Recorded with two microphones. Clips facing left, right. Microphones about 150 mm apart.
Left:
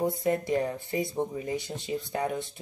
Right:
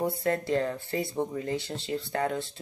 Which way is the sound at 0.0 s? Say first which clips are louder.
Left 1 dB; 15° left (ahead or behind).